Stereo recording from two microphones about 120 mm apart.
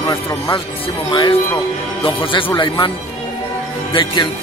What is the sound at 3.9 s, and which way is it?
Speech, 40° left (ahead or behind).